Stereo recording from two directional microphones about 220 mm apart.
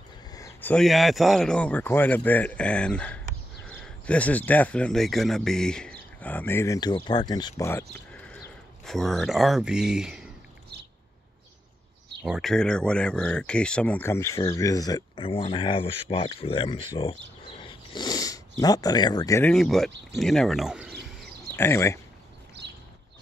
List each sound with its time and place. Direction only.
0.3 s speech: 15° left (ahead or behind); by 10.3 s 5° right (ahead or behind)
12.2 s speech: centre (ahead or behind); by 16.8 s 25° left (ahead or behind)
17.5 s a sound: 25° left (ahead or behind)
18.6 s speech: 15° left (ahead or behind)
19.5 s speech: centre (ahead or behind)
21.5 s speech: 10° left (ahead or behind)
22.6 s a sound: 50° right (ahead or behind)